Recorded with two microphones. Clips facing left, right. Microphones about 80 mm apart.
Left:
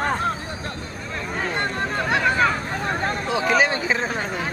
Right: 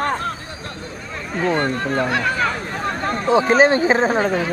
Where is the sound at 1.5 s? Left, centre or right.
Right.